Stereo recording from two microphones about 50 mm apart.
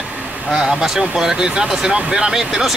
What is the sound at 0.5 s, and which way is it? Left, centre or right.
A man's voice, centre.